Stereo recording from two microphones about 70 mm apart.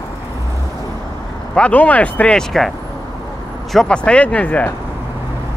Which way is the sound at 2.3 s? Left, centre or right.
Centre.